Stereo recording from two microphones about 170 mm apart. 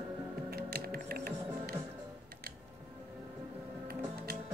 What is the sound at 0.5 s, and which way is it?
Music, 65° right (ahead or behind).